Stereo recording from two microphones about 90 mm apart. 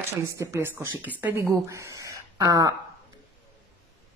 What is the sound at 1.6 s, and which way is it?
Speech, 35° right (ahead or behind).